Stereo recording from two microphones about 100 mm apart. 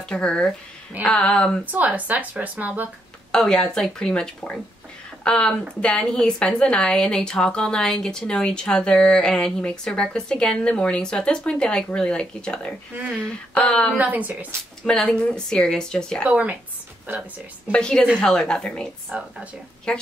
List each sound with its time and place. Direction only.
0.1 s a woman's voice: 10° left (ahead or behind)
1.7 s speech: 15° right (ahead or behind)
3.3 s a woman's voice: 5° left (ahead or behind)
13.9 s speech: 15° right (ahead or behind)
14.9 s a woman's voice: 10° left (ahead or behind)
16.3 s speech: 15° right (ahead or behind)
17.6 s a woman's voice: 10° left (ahead or behind)
19.1 s speech: 15° right (ahead or behind)
19.9 s a woman's voice: 10° left (ahead or behind)